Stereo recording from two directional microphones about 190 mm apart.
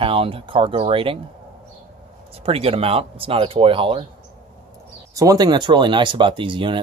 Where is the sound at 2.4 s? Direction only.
30° right (ahead or behind).